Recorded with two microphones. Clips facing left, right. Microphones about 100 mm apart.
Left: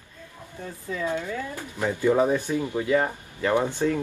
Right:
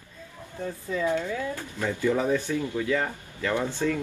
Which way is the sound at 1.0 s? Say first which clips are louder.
Right 2 dB; 15° left (ahead or behind).